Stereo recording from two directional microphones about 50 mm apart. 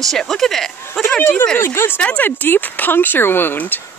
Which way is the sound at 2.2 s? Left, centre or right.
Left.